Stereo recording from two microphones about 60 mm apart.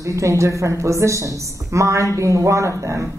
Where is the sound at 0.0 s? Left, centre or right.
Right.